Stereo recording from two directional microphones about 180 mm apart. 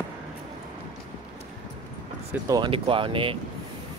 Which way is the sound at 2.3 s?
20° right (ahead or behind).